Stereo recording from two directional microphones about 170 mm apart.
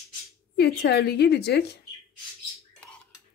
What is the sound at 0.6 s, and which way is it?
A woman's voice, 70° left (ahead or behind).